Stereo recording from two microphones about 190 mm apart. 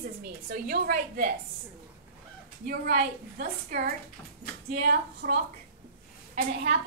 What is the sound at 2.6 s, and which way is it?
A woman's voice, 50° right (ahead or behind).